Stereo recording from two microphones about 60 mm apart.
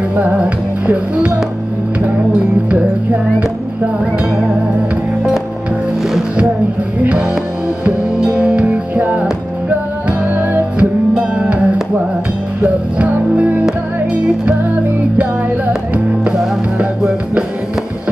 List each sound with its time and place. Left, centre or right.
0.1 s music: right
2.7 s music: right
7.0 s music: right
11.1 s music: centre
15.1 s music: right